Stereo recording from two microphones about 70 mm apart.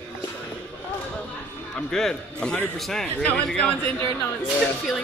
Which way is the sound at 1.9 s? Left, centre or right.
Centre.